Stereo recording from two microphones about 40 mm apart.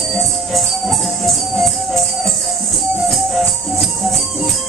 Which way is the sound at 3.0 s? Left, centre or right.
Centre.